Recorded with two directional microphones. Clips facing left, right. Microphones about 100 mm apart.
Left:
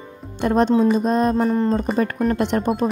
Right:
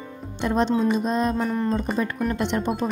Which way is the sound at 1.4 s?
30° left (ahead or behind).